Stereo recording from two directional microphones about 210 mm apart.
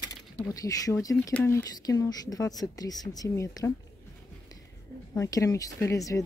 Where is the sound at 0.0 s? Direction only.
15° left (ahead or behind).